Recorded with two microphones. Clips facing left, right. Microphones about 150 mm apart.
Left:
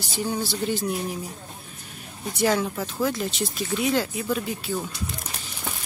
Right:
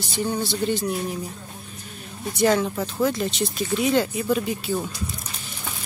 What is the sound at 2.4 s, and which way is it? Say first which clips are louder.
Speech: right 3 dB; 5° left (ahead or behind).